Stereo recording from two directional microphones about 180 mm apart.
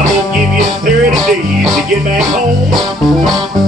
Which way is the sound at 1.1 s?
Centre (ahead or behind).